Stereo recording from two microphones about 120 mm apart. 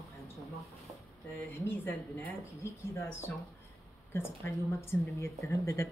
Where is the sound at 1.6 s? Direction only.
15° left (ahead or behind).